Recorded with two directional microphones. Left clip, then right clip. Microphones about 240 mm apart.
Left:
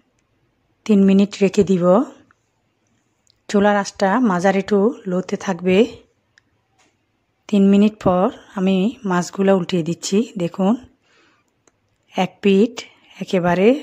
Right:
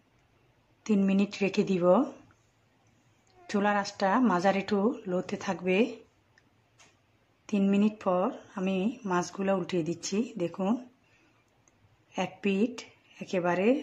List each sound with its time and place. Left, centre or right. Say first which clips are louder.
0.8 s speech: left 13 dB; left
3.4 s speech: left 11 dB; left
7.4 s speech: left 12 dB; left
12.1 s speech: left 14 dB; left